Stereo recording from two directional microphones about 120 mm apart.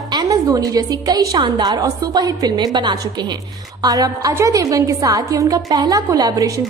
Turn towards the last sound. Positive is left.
turn(degrees=-30)  # may be behind; listen again after turning